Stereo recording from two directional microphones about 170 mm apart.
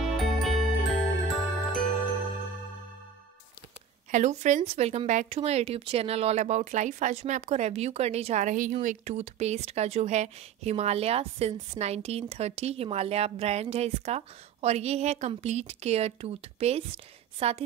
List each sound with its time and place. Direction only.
0.0 s music: centre (ahead or behind)
4.1 s a woman's voice: 45° right (ahead or behind)